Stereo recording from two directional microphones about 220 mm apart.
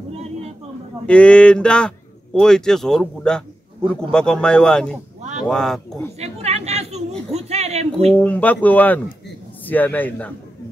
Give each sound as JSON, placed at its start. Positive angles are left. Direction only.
{"t": 1.0, "sound": "speech", "side_deg": 5}
{"t": 6.1, "sound": "speech", "side_deg": -30}
{"t": 8.1, "sound": "speech", "side_deg": 5}